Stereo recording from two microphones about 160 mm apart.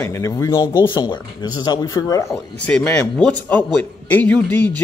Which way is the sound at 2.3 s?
5° left (ahead or behind).